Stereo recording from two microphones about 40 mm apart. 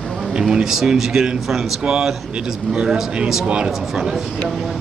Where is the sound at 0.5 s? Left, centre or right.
Centre.